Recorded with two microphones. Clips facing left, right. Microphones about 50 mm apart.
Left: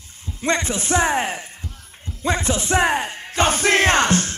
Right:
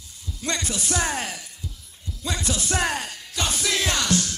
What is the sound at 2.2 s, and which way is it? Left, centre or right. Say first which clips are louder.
Battle cry: left 7 dB; left.